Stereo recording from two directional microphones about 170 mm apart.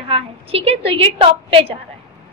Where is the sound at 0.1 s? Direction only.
35° right (ahead or behind).